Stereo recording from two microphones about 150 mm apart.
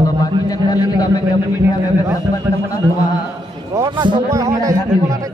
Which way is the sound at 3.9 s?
30° right (ahead or behind).